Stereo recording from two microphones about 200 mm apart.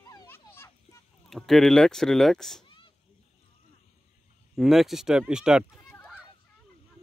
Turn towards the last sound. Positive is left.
turn(degrees=-5)  # may be behind; listen again after turning